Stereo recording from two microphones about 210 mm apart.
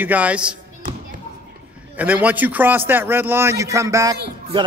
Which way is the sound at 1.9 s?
5° right (ahead or behind).